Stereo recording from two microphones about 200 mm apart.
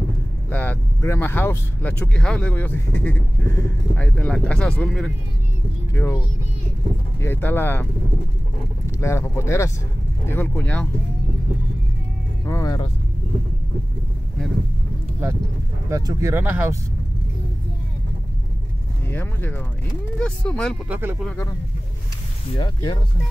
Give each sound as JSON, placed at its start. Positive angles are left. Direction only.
{"t": 0.5, "sound": "speech", "side_deg": 10}
{"t": 9.0, "sound": "speech", "side_deg": 15}
{"t": 12.4, "sound": "vehicle", "side_deg": 15}
{"t": 15.9, "sound": "speech", "side_deg": -15}
{"t": 19.0, "sound": "speech", "side_deg": 10}
{"t": 20.9, "sound": "speech", "side_deg": -10}
{"t": 22.6, "sound": "speech", "side_deg": 20}